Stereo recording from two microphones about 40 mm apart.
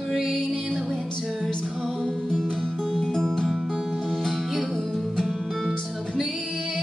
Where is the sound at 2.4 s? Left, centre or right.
Centre.